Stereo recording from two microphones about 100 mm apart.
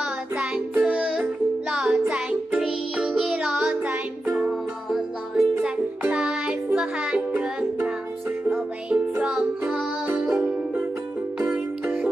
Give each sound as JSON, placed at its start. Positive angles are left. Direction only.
{"t": 0.7, "sound": "music", "side_deg": -15}
{"t": 1.7, "sound": "music", "side_deg": -5}
{"t": 11.3, "sound": "music", "side_deg": -10}